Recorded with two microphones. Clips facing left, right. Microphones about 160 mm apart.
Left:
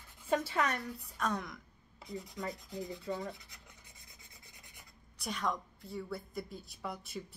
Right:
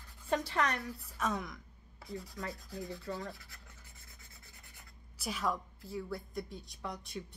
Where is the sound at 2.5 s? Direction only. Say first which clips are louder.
Left 1 dB; 20° left (ahead or behind).